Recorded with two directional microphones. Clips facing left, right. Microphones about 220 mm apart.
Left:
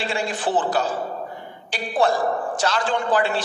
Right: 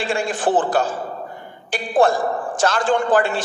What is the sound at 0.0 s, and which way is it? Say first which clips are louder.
A man's voice: right 4 dB; 50° right (ahead or behind).